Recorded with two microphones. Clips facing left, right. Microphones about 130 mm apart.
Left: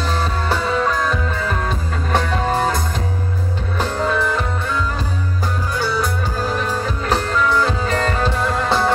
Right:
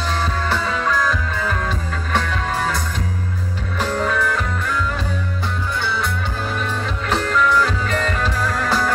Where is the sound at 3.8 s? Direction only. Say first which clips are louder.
Left 1 dB; 35° left (ahead or behind).